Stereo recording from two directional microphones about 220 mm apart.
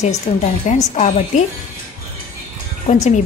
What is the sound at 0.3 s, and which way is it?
A woman's voice, 30° left (ahead or behind).